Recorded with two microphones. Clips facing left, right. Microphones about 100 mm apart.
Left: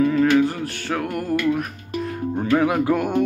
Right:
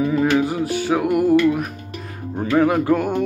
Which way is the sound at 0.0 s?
15° right (ahead or behind).